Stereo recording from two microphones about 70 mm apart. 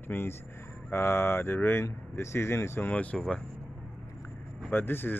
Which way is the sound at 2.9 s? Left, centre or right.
Centre.